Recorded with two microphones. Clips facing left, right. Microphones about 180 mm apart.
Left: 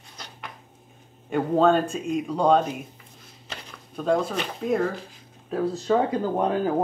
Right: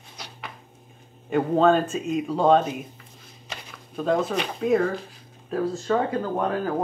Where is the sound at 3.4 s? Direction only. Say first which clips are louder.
Even; 5° right (ahead or behind).